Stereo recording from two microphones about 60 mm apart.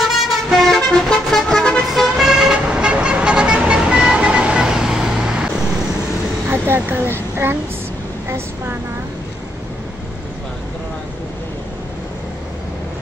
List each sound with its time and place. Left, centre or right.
0.3 s vehicle: centre
2.5 s vehicle: centre
6.5 s vehicle: right